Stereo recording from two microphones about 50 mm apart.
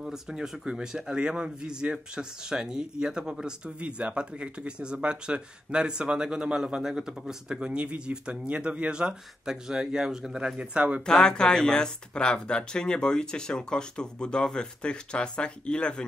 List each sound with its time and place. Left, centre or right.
0.0 s speech: centre
10.6 s speech: right
11.1 s speech: centre